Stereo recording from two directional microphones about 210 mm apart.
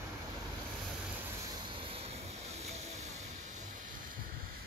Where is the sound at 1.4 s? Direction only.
25° right (ahead or behind).